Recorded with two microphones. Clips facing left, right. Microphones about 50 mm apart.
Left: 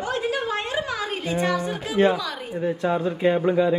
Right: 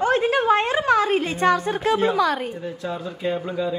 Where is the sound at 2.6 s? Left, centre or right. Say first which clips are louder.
Left 6 dB; left.